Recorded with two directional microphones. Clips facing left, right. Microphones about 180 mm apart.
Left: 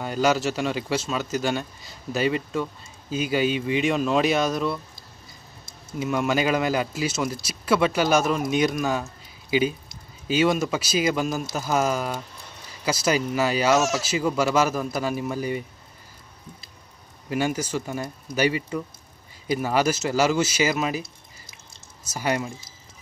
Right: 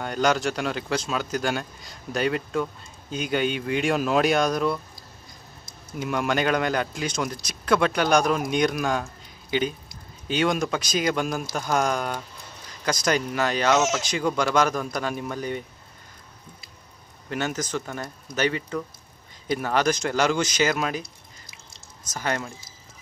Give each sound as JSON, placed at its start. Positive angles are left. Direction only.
{"t": 0.0, "sound": "speech", "side_deg": 5}
{"t": 5.9, "sound": "speech", "side_deg": 0}
{"t": 13.7, "sound": "speech", "side_deg": -20}
{"t": 14.0, "sound": "speech", "side_deg": 5}
{"t": 17.3, "sound": "speech", "side_deg": 10}
{"t": 22.0, "sound": "speech", "side_deg": 10}